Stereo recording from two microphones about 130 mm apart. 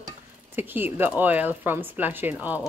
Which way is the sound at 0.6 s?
15° right (ahead or behind).